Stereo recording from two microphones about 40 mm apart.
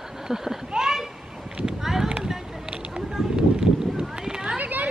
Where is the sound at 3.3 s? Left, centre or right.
Centre.